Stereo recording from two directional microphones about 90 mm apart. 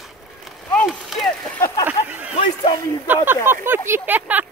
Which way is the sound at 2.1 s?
20° right (ahead or behind).